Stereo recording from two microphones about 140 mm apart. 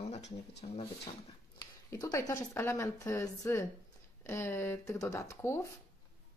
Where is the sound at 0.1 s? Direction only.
50° left (ahead or behind).